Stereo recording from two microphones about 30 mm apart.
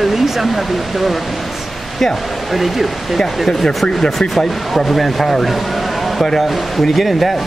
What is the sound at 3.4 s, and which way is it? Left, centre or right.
Speech, left.